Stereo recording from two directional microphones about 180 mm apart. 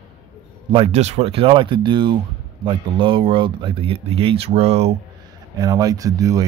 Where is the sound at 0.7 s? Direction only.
30° right (ahead or behind).